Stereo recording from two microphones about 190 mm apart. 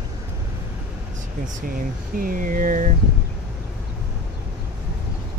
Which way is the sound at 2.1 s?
45° right (ahead or behind).